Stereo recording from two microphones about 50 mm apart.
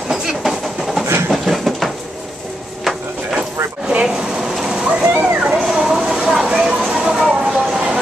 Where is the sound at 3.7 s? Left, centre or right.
Centre.